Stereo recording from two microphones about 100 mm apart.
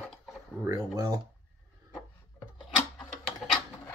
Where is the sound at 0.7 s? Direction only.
35° right (ahead or behind).